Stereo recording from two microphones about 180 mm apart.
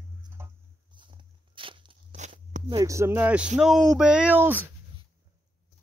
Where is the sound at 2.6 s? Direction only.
20° right (ahead or behind).